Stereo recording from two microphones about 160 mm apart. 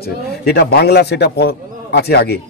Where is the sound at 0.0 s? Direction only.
85° left.